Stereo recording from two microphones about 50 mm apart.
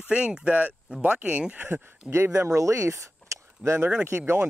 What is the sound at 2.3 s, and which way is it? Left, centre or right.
Speech, right.